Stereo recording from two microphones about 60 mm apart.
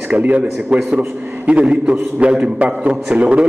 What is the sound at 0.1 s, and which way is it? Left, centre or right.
A man's voice, right.